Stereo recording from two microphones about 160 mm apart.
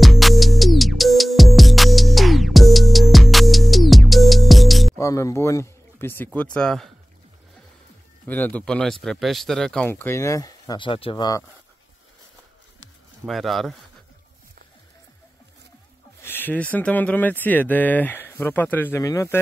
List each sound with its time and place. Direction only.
0.0 s music: centre (ahead or behind)
4.9 s speech: 20° left (ahead or behind); by 6.9 s 5° left (ahead or behind)
8.3 s speech: 10° left (ahead or behind)
9.9 s speech: 15° left (ahead or behind)
13.2 s speech: centre (ahead or behind)
16.2 s speech: 15° left (ahead or behind)